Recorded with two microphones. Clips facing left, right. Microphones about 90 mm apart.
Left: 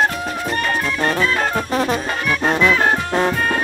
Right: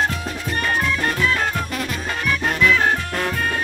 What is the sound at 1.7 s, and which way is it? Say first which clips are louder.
Music: left 7 dB; 35° left (ahead or behind).